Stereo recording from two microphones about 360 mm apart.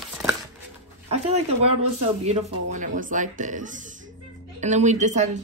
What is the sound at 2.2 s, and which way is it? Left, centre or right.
Speech, centre.